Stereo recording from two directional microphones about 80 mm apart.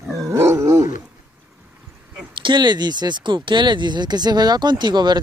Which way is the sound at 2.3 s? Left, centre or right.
Right.